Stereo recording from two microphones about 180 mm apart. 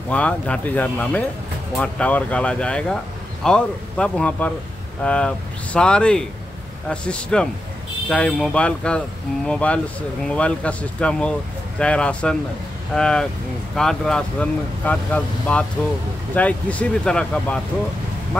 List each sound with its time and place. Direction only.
0.1 s speech: 5° left (ahead or behind)